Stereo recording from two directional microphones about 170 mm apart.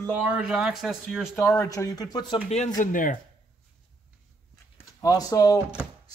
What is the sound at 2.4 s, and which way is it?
Speech, 45° left (ahead or behind).